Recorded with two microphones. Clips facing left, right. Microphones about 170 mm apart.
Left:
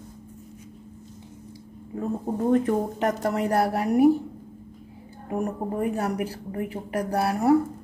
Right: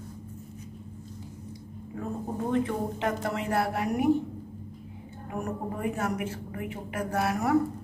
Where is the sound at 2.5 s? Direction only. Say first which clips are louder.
Left 6 dB; 45° left (ahead or behind).